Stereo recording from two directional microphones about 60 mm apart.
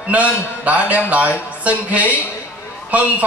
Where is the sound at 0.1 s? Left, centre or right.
Right.